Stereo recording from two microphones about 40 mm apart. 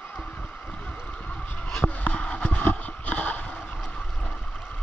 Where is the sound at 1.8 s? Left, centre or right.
Left.